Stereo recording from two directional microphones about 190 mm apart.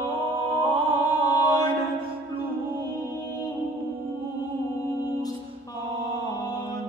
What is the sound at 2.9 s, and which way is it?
Music, 20° left (ahead or behind).